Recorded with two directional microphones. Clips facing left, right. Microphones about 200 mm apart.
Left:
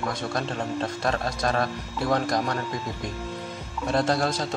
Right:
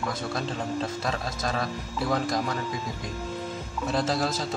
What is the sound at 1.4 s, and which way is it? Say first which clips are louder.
Speech: left 4 dB; 55° left (ahead or behind).